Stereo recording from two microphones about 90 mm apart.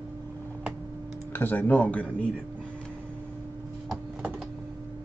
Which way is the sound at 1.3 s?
20° left (ahead or behind).